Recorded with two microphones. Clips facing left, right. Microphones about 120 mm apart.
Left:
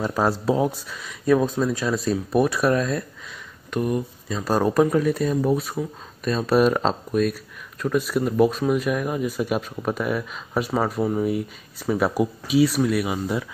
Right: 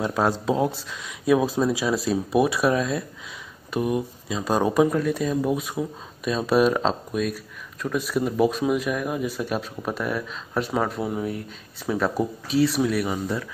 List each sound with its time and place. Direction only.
0.0 s speech: centre (ahead or behind)